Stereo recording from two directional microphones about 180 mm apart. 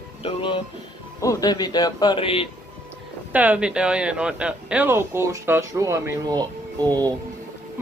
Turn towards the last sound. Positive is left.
turn(degrees=-20)  # may be behind; listen again after turning